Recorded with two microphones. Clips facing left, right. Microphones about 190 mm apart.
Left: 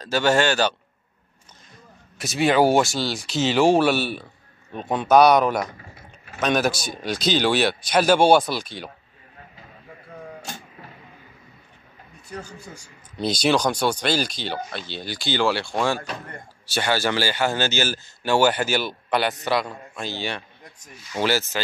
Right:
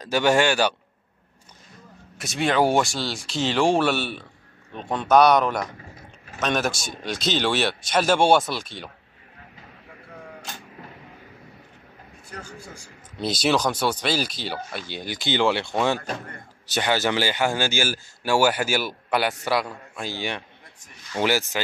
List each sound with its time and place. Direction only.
0.0 s speech: 15° right (ahead or behind)
2.1 s speech: 5° left (ahead or behind)
13.2 s speech: 5° right (ahead or behind)